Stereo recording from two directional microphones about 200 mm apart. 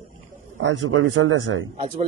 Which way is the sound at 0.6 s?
70° right (ahead or behind).